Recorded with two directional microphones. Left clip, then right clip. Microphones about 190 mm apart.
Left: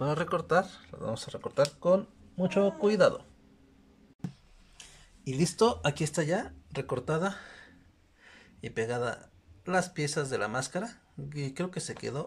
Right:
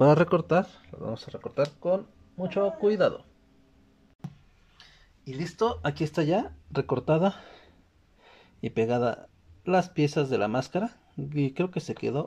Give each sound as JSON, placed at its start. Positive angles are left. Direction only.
{"t": 0.0, "sound": "speech", "side_deg": -30}
{"t": 0.3, "sound": "speech", "side_deg": -15}
{"t": 4.7, "sound": "speech", "side_deg": 10}